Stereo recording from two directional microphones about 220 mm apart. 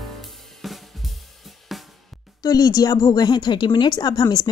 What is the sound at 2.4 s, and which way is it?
A woman's voice, 15° left (ahead or behind).